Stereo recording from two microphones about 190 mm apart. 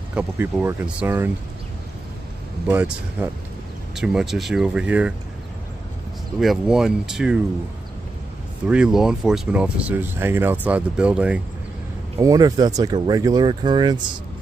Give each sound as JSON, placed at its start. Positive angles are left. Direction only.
{"t": 0.1, "sound": "speech", "side_deg": -10}
{"t": 2.7, "sound": "speech", "side_deg": -10}
{"t": 6.4, "sound": "speech", "side_deg": 0}
{"t": 8.6, "sound": "speech", "side_deg": -5}
{"t": 12.2, "sound": "speech", "side_deg": -20}